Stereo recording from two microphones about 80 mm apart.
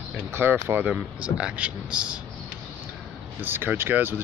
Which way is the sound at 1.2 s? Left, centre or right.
Centre.